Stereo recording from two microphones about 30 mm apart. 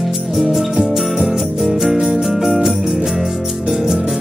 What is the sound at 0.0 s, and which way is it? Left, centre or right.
Music, centre.